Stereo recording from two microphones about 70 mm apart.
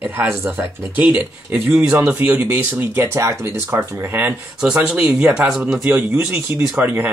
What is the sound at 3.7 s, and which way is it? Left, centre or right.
Speech, right.